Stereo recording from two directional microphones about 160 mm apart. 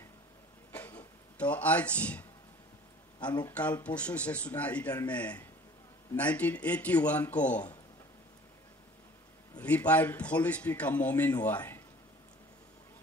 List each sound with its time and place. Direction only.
0.7 s a sound: 10° left (ahead or behind)
3.2 s speech: 25° left (ahead or behind)
3.4 s a man's voice: 10° left (ahead or behind)
9.6 s a man's voice: 10° left (ahead or behind)